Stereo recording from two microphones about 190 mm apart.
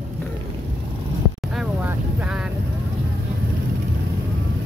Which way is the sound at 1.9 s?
5° right (ahead or behind).